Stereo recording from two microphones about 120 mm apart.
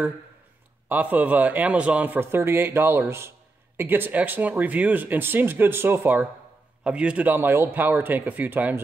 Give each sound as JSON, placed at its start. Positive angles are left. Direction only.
{"t": 0.8, "sound": "a man's voice", "side_deg": -15}